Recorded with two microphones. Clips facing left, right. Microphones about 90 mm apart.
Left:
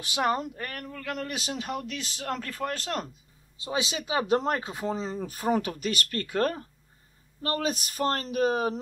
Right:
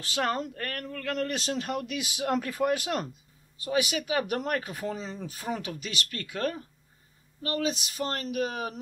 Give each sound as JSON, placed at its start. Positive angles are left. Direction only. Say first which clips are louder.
{"t": 0.0, "sound": "speech", "louder": "left 2 dB", "side_deg": 15}
{"t": 3.5, "sound": "speech", "louder": "right 3 dB", "side_deg": 25}
{"t": 5.0, "sound": "speech", "louder": "left 6 dB", "side_deg": 45}